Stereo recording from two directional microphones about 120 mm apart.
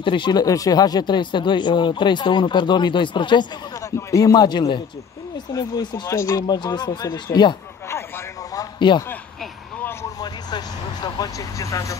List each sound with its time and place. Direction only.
0.0 s speech: 40° left (ahead or behind)
4.1 s speech: 30° left (ahead or behind)
6.4 s speech: 35° left (ahead or behind)
8.5 s a sound: 40° left (ahead or behind)
10.2 s vehicle: 35° left (ahead or behind)